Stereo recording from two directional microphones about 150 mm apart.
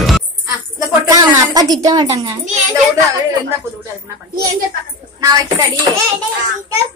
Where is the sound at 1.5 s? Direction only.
25° right (ahead or behind).